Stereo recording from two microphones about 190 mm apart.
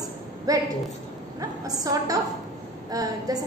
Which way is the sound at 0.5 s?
20° right (ahead or behind).